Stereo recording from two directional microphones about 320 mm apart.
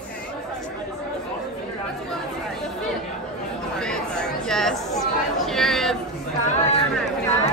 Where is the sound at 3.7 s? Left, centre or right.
Centre.